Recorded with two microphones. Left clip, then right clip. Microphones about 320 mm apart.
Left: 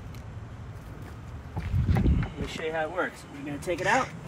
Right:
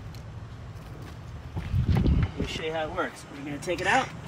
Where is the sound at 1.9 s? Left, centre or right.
Centre.